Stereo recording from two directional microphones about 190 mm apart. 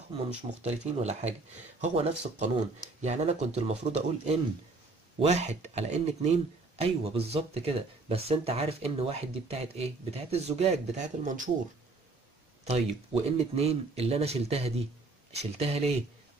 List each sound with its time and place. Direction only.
0.6 s speech: 35° right (ahead or behind)
12.6 s speech: 35° right (ahead or behind)